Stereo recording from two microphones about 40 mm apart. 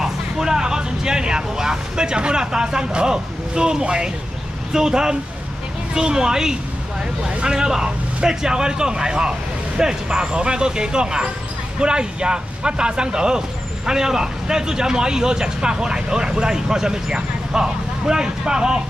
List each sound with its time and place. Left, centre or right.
0.0 s a man's voice: centre